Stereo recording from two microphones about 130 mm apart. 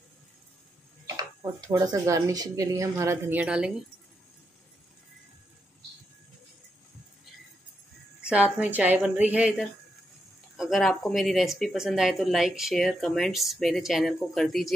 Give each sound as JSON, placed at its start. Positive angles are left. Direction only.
{"t": 1.0, "sound": "speech", "side_deg": -30}
{"t": 3.3, "sound": "a woman's voice", "side_deg": -10}
{"t": 8.2, "sound": "a woman's voice", "side_deg": -10}